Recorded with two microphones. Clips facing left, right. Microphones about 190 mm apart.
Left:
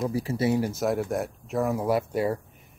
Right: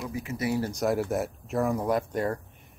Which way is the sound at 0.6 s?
5° left (ahead or behind).